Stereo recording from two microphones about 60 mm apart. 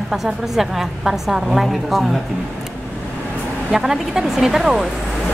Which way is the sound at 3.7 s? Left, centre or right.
Centre.